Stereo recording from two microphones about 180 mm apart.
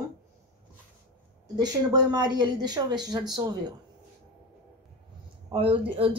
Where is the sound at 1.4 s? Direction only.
20° right (ahead or behind).